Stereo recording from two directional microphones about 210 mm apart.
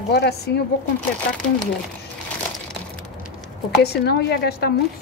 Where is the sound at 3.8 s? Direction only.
50° left (ahead or behind).